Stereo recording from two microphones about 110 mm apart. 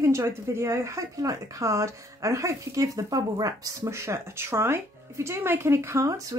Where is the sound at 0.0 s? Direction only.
25° right (ahead or behind).